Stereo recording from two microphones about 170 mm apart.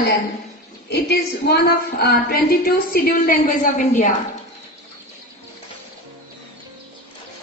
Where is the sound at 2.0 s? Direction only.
65° left (ahead or behind).